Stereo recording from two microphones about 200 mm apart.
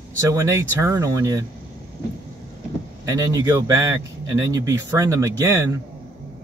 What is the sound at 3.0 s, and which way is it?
A man's voice, 15° right (ahead or behind).